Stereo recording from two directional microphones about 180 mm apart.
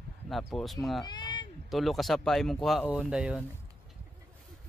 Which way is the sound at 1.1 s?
25° left (ahead or behind).